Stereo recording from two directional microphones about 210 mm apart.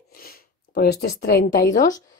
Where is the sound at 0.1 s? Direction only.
45° left (ahead or behind).